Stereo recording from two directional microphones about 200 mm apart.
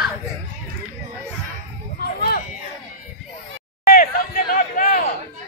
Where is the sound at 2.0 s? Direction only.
50° left (ahead or behind).